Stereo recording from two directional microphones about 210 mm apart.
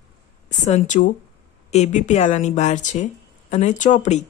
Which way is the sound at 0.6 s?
35° left (ahead or behind).